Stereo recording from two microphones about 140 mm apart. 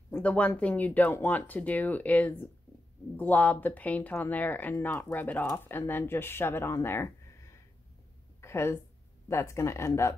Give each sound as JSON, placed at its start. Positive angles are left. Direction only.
{"t": 0.1, "sound": "speech", "side_deg": 10}
{"t": 8.4, "sound": "a sound", "side_deg": 20}
{"t": 9.3, "sound": "speech", "side_deg": 20}